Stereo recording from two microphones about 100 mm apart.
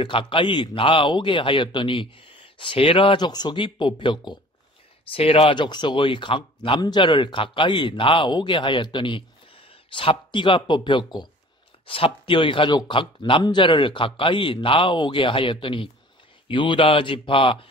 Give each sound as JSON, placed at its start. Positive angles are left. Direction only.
{"t": 0.0, "sound": "speech", "side_deg": 60}
{"t": 5.0, "sound": "speech", "side_deg": 70}
{"t": 11.8, "sound": "speech", "side_deg": 65}